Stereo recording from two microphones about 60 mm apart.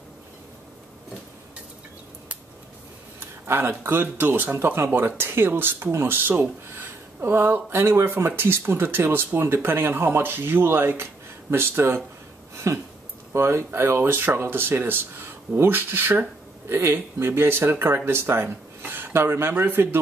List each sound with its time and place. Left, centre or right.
3.2 s speech: right
12.5 s a sound: right
13.3 s speech: right